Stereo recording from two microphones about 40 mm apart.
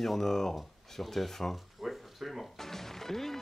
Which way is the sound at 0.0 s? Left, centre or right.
Centre.